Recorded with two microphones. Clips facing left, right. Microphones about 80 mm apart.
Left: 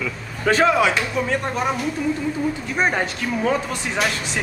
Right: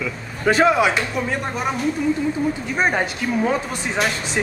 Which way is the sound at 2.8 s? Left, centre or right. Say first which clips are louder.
Right 1 dB; centre.